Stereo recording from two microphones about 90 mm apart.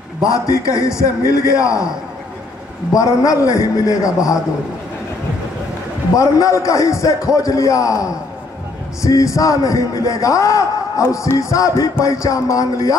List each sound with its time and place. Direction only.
0.3 s a man's voice: 40° left (ahead or behind)
2.9 s a man's voice: 40° left (ahead or behind)
6.1 s a man's voice: 40° left (ahead or behind)